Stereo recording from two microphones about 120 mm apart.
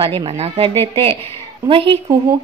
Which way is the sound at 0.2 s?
50° right (ahead or behind).